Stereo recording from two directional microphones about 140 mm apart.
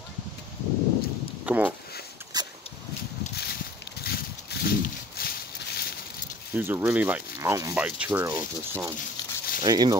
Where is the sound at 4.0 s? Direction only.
90° left.